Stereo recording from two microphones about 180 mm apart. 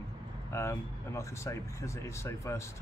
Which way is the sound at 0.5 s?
15° left (ahead or behind).